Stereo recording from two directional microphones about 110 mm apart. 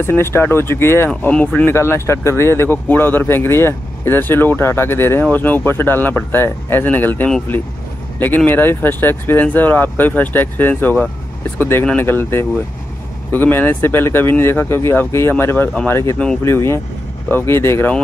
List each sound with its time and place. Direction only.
0.0 s speech: 20° left (ahead or behind)
8.5 s speech: 20° left (ahead or behind)
15.9 s speech: 25° left (ahead or behind)